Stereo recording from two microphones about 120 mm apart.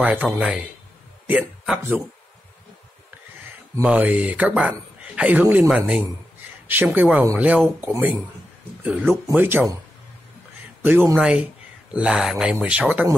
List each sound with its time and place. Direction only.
0.0 s speech: 15° right (ahead or behind)
1.8 s speech: 20° right (ahead or behind)
3.8 s speech: 10° right (ahead or behind)
7.8 s speech: 20° right (ahead or behind)
8.8 s speech: 10° right (ahead or behind)
10.6 s a sound: 15° right (ahead or behind)
11.1 s speech: 5° right (ahead or behind)